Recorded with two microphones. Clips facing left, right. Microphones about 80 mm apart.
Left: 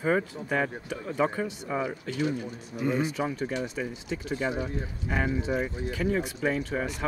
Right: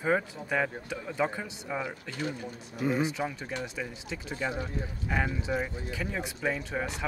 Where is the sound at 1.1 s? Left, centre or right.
Left.